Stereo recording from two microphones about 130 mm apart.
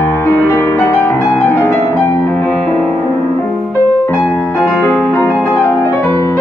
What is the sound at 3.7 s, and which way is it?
Music, 20° left (ahead or behind).